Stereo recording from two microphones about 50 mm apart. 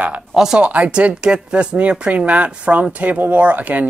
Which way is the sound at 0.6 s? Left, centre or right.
Right.